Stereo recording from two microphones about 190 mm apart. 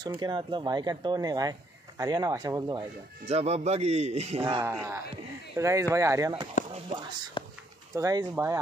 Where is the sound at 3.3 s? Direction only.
35° right (ahead or behind).